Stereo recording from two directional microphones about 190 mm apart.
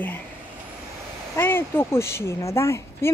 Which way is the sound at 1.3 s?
10° left (ahead or behind).